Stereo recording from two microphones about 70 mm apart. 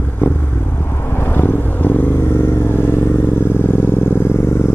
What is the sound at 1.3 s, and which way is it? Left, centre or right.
Vehicle, left.